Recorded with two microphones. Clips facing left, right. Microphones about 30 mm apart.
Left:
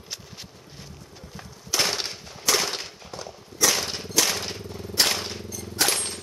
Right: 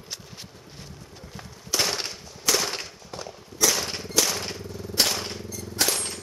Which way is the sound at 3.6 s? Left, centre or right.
Centre.